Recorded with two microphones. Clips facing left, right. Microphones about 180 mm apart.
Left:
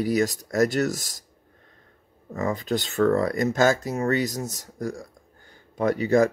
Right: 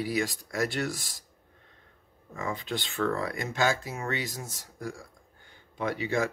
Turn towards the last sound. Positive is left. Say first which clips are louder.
# left 9 dB
turn(degrees=40)  # may be behind; listen again after turning